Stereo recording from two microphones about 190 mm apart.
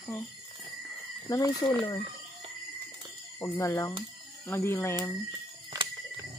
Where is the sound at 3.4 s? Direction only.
15° left (ahead or behind).